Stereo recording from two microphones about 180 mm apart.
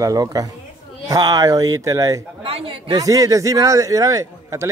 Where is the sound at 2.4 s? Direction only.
30° right (ahead or behind).